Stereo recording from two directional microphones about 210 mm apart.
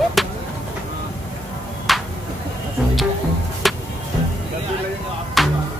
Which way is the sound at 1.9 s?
Centre (ahead or behind).